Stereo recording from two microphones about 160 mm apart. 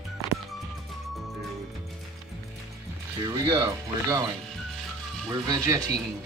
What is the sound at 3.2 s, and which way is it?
Speech, 25° right (ahead or behind).